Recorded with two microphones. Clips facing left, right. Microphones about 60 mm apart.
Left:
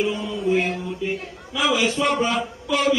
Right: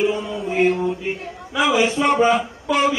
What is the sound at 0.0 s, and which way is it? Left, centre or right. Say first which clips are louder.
A man's voice: right 2 dB; centre.